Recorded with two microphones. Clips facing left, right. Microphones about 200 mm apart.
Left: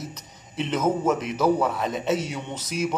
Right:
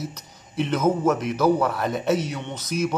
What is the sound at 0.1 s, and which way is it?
A man's voice, centre (ahead or behind).